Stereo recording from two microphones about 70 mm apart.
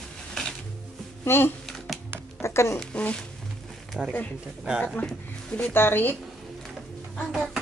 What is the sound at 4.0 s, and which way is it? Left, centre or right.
Speech, centre.